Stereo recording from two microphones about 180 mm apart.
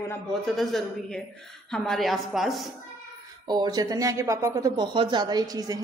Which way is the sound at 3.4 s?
20° right (ahead or behind).